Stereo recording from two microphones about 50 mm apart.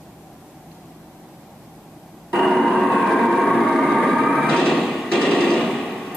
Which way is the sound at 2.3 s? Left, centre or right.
Centre.